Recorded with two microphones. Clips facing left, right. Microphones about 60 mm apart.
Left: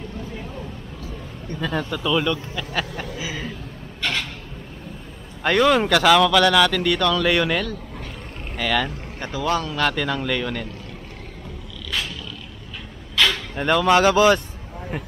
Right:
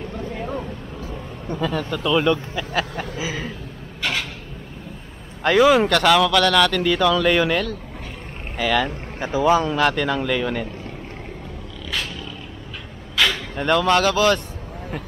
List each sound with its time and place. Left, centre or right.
0.3 s vehicle: right
1.7 s speech: centre
2.1 s speech: centre
3.2 s a sound: centre
4.0 s a sound: centre
5.4 s speech: centre
9.3 s speech: centre
9.8 s speech: centre
13.1 s a sound: centre
13.6 s speech: centre
13.9 s speech: centre